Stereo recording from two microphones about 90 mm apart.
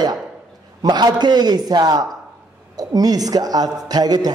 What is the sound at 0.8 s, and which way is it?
A man's voice, 50° right (ahead or behind).